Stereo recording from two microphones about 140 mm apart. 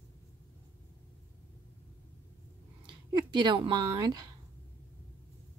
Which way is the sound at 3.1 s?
30° right (ahead or behind).